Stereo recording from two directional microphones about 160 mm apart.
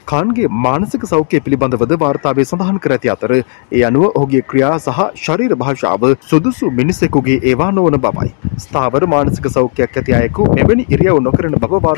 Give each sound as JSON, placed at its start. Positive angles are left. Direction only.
{"t": 0.1, "sound": "speech", "side_deg": -25}